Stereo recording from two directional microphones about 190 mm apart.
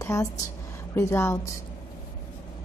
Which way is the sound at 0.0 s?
15° left (ahead or behind).